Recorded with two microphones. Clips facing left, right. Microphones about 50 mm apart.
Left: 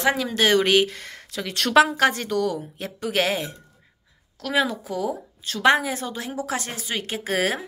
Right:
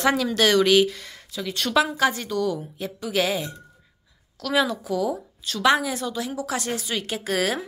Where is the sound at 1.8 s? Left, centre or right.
Left.